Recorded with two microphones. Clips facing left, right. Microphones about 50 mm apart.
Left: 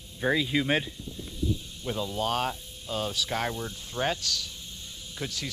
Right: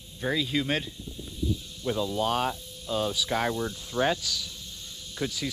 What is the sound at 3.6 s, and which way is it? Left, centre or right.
Speech, right.